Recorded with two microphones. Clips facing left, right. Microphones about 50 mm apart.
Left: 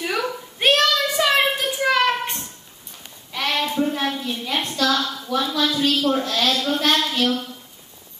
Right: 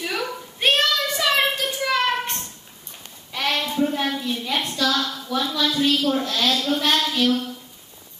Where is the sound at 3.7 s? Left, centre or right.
Centre.